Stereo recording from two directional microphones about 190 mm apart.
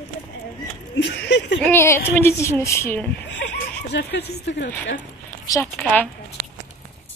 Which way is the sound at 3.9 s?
60° left (ahead or behind).